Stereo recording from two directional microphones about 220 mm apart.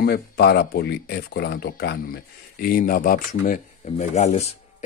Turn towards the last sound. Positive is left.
turn(degrees=30)  # may be behind; listen again after turning